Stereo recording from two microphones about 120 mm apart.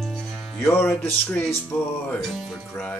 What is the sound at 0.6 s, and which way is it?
Music, 20° left (ahead or behind).